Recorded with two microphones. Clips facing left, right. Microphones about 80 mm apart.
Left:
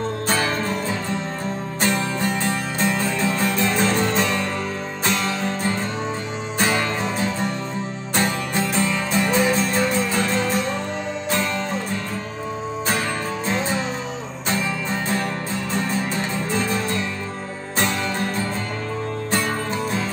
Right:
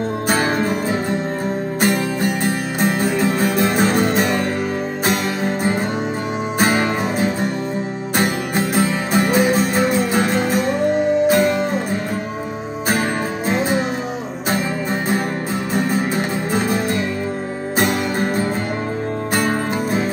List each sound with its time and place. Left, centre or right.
0.3 s music: right
2.4 s music: right
6.6 s music: right
13.5 s music: right
16.5 s music: right